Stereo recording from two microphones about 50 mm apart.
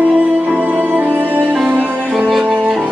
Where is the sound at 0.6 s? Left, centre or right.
Right.